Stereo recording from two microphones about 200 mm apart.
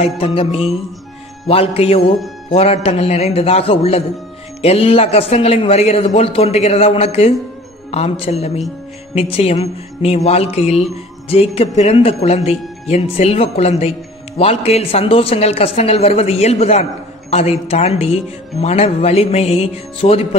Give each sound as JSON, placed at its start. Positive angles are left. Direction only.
{"t": 0.0, "sound": "a man's voice", "side_deg": 25}